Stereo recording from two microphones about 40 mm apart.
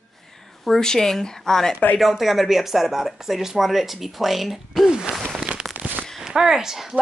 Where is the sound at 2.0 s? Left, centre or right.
Centre.